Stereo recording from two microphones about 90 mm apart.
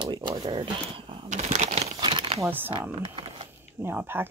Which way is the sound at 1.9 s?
80° right.